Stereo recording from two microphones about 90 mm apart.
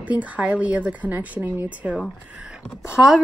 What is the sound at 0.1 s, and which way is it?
Speech, 15° right (ahead or behind).